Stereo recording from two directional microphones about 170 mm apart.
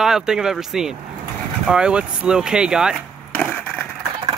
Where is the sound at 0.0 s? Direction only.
5° right (ahead or behind).